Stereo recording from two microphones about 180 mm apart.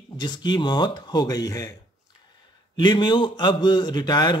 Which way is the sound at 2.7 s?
25° left (ahead or behind).